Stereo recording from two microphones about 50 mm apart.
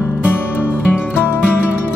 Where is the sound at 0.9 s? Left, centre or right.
Left.